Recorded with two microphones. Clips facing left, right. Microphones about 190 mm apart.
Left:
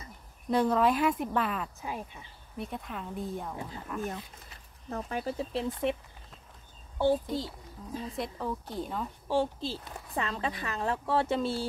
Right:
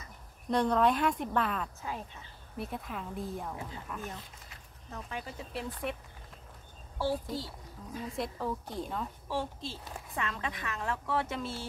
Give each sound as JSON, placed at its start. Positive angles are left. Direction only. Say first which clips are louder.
{"t": 0.5, "sound": "speech", "louder": "left 2 dB", "side_deg": 5}
{"t": 1.8, "sound": "speech", "louder": "left 2 dB", "side_deg": 15}
{"t": 2.5, "sound": "speech", "louder": "left 1 dB", "side_deg": 0}
{"t": 4.8, "sound": "speech", "louder": "left 7 dB", "side_deg": 45}
{"t": 5.5, "sound": "a child's voice", "louder": "left 4 dB", "side_deg": 25}
{"t": 7.0, "sound": "a child's voice", "louder": "left 6 dB", "side_deg": 20}
{"t": 8.2, "sound": "speech", "louder": "right 1 dB", "side_deg": 0}
{"t": 9.3, "sound": "a woman's voice", "louder": "left 8 dB", "side_deg": 30}